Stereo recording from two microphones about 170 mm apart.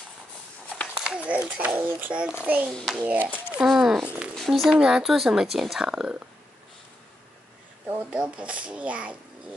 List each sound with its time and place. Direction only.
0.9 s a child's voice: 5° right (ahead or behind)
2.7 s a child's voice: centre (ahead or behind)
7.8 s a child's voice: 15° right (ahead or behind)